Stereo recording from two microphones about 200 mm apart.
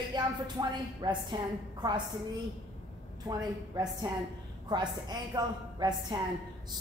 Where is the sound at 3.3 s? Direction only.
20° right (ahead or behind).